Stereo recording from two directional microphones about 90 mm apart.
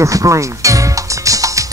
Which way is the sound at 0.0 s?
35° right (ahead or behind).